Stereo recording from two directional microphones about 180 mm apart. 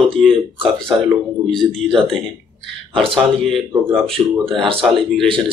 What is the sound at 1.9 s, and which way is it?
Speech, centre (ahead or behind).